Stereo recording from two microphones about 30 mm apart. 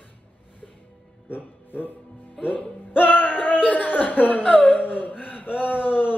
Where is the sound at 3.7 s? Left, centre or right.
Left.